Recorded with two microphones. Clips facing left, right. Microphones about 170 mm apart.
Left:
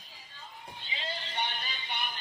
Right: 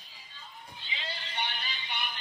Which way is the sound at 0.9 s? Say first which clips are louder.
Left 2 dB; 40° left (ahead or behind).